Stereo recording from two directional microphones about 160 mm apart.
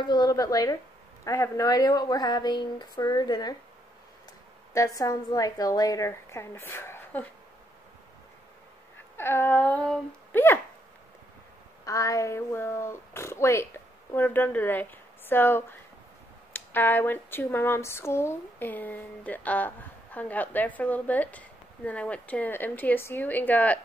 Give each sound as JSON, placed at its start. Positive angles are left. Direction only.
{"t": 0.0, "sound": "a woman's voice", "side_deg": 25}
{"t": 4.7, "sound": "a woman's voice", "side_deg": 20}
{"t": 9.1, "sound": "a sound", "side_deg": 15}
{"t": 11.8, "sound": "speech", "side_deg": 20}